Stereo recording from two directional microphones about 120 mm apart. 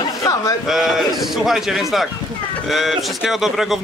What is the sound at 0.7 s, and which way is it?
Speech, centre (ahead or behind).